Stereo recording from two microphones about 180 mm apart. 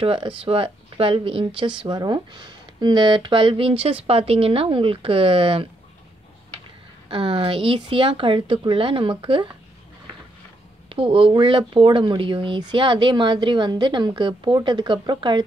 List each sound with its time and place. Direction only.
0.0 s speech: 30° right (ahead or behind)
7.1 s speech: 30° right (ahead or behind)
10.9 s speech: 30° right (ahead or behind)